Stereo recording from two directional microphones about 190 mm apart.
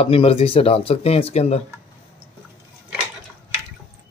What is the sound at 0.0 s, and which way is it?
Speech, 30° left (ahead or behind).